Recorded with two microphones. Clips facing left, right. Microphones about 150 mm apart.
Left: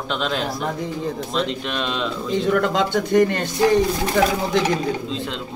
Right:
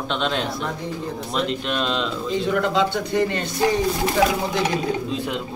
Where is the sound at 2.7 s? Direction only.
45° left (ahead or behind).